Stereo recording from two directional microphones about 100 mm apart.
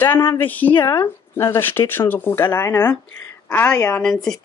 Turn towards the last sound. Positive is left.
turn(degrees=5)  # may be behind; listen again after turning